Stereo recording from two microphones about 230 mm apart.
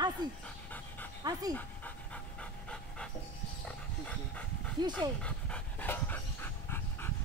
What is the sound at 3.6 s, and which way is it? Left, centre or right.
Dog, centre.